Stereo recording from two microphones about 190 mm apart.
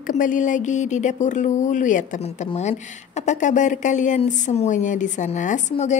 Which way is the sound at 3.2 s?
40° left (ahead or behind).